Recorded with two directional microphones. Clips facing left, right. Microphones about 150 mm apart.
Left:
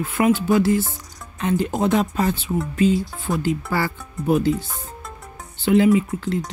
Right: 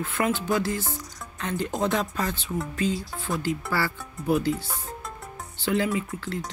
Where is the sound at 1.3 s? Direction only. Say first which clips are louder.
Left 7 dB; 20° left (ahead or behind).